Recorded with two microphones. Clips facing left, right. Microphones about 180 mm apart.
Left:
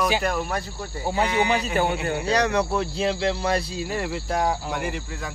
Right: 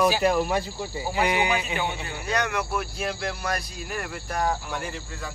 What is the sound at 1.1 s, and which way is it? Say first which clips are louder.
Speech: left 2 dB; 30° left (ahead or behind).